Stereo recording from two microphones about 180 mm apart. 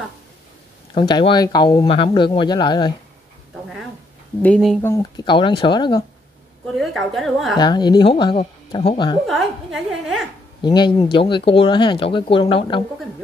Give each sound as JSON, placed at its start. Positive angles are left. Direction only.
{"t": 0.9, "sound": "speech", "side_deg": 25}
{"t": 4.4, "sound": "a woman's voice", "side_deg": 5}
{"t": 4.8, "sound": "speech", "side_deg": 15}
{"t": 5.2, "sound": "speech", "side_deg": 25}
{"t": 7.2, "sound": "a woman's voice", "side_deg": 0}
{"t": 7.5, "sound": "speech", "side_deg": 25}
{"t": 9.2, "sound": "a woman's voice", "side_deg": 0}
{"t": 10.6, "sound": "speech", "side_deg": 25}